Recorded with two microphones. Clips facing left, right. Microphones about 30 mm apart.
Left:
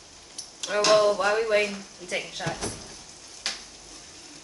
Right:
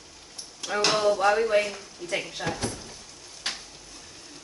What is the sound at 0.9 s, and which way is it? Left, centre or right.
A woman's voice, centre.